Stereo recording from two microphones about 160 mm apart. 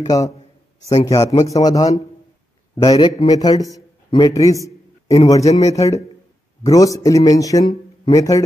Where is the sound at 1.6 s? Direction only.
25° left (ahead or behind).